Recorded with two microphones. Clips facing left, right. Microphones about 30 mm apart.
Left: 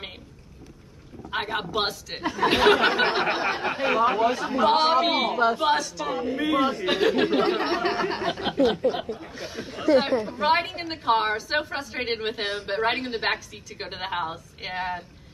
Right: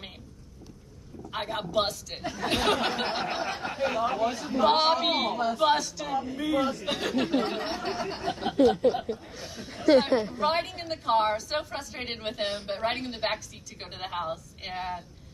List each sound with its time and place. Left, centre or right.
1.3 s a woman's voice: left
4.2 s a woman's voice: left
4.6 s a woman's voice: centre
6.1 s speech: left
8.6 s speech: left
9.4 s a woman's voice: left
9.9 s speech: right
10.4 s a woman's voice: left